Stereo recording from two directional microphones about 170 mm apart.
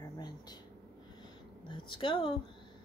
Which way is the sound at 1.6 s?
30° left (ahead or behind).